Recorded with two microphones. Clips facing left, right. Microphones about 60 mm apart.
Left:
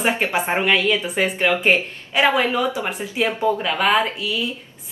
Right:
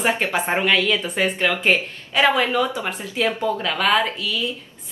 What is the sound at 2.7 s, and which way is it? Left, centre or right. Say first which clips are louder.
Speech: left 1 dB; centre.